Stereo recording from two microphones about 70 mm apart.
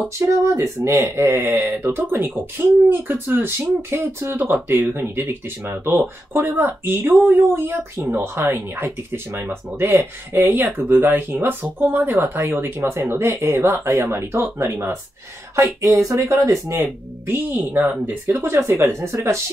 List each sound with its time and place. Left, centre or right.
0.2 s speech: right
1.2 s speech: right
16.8 s speech: right